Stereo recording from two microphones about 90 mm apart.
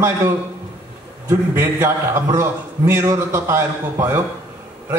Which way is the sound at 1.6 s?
30° right (ahead or behind).